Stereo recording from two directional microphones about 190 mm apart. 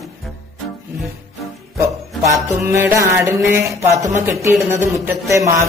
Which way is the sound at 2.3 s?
15° right (ahead or behind).